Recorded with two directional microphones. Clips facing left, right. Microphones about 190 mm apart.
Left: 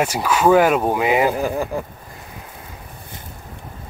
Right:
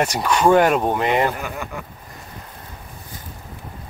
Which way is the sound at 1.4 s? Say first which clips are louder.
Left 8 dB; 35° left (ahead or behind).